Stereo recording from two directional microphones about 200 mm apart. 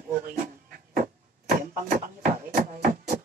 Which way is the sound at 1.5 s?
40° right (ahead or behind).